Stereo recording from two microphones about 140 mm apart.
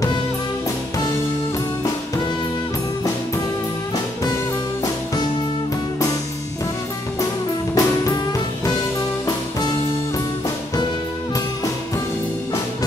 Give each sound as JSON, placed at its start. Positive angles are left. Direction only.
{"t": 7.7, "sound": "music", "side_deg": 25}